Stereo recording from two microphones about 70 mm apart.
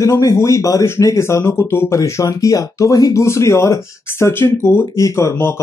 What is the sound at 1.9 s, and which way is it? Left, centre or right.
Speech, left.